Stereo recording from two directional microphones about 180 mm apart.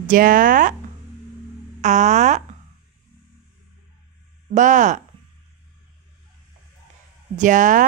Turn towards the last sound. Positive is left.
turn(degrees=-45)  # may be behind; listen again after turning